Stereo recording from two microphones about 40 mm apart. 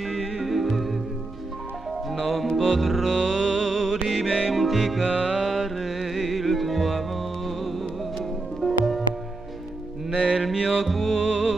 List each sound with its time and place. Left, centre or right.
0.0 s music: centre
2.5 s music: centre
3.1 s music: centre
5.0 s music: centre
5.4 s music: centre
10.1 s music: centre